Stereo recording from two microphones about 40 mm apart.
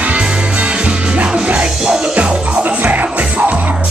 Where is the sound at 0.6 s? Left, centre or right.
Right.